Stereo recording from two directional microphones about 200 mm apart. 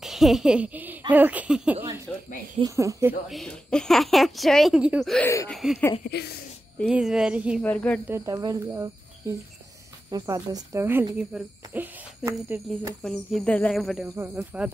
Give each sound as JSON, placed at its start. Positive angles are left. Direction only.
{"t": 0.0, "sound": "speech", "side_deg": 0}
{"t": 3.3, "sound": "speech", "side_deg": 0}
{"t": 6.0, "sound": "speech", "side_deg": 55}
{"t": 6.9, "sound": "speech", "side_deg": -5}
{"t": 7.6, "sound": "speech", "side_deg": 5}
{"t": 8.1, "sound": "speech", "side_deg": -15}
{"t": 10.1, "sound": "speech", "side_deg": -15}
{"t": 13.0, "sound": "speech", "side_deg": 5}
{"t": 14.1, "sound": "speech", "side_deg": -15}